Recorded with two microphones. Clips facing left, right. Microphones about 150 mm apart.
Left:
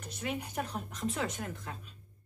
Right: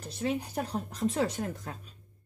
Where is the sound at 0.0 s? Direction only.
30° right (ahead or behind).